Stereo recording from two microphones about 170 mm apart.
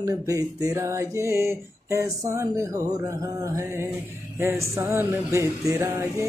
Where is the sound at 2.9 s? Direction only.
20° right (ahead or behind).